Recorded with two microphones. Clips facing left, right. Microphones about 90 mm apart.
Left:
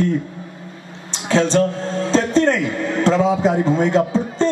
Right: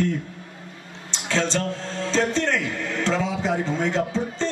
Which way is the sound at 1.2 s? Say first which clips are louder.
Left 8 dB; 50° left (ahead or behind).